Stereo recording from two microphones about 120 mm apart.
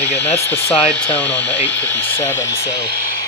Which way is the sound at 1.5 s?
20° left (ahead or behind).